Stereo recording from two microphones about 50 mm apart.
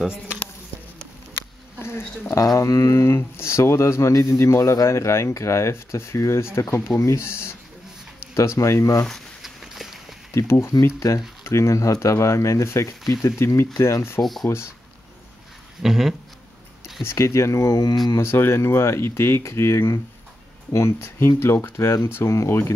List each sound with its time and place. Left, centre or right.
1.8 s a sound: left
2.3 s speech: left
7.0 s speech: left
8.4 s speech: left
9.1 s a sound: centre
10.3 s speech: left
11.0 s speech: left
14.2 s a sound: centre
15.8 s a sound: centre
17.0 s speech: left
18.1 s speech: left
21.7 s speech: left